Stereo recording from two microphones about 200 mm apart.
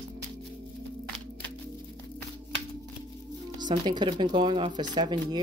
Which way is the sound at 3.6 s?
20° right (ahead or behind).